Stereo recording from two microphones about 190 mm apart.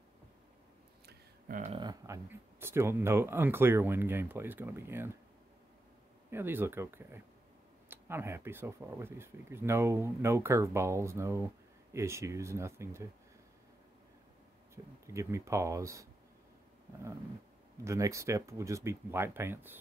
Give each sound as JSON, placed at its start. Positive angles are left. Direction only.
{"t": 1.0, "sound": "a sound", "side_deg": -40}
{"t": 1.8, "sound": "speech", "side_deg": -20}
{"t": 6.3, "sound": "speech", "side_deg": -10}
{"t": 15.0, "sound": "speech", "side_deg": -15}
{"t": 17.8, "sound": "speech", "side_deg": -15}